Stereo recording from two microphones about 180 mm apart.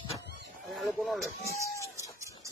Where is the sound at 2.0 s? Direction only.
15° right (ahead or behind).